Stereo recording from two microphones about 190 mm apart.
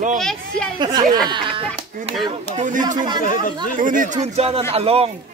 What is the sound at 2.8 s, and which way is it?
Speech, 20° right (ahead or behind).